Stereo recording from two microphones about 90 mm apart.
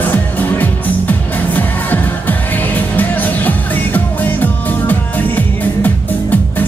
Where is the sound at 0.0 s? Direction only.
20° left (ahead or behind).